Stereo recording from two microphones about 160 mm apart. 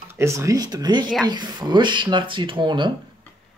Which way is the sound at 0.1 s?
15° right (ahead or behind).